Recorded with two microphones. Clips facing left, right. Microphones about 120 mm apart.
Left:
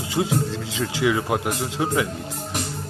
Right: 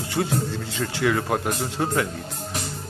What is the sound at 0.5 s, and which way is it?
Speech, 90° left.